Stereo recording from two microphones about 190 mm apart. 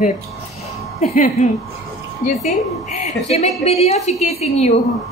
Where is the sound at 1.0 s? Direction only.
40° left (ahead or behind).